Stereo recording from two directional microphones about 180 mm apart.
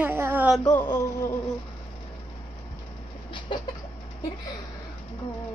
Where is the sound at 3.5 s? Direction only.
25° left (ahead or behind).